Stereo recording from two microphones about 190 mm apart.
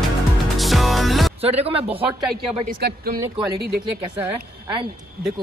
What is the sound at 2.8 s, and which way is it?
Speech, 55° right (ahead or behind).